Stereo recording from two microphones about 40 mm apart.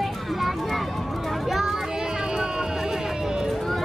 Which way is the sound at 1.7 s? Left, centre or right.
Centre.